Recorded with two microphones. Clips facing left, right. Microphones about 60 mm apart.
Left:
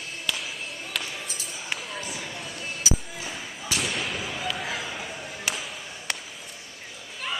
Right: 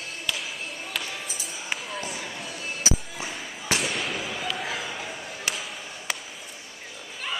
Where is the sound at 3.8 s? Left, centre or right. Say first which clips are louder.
Right 1 dB; centre.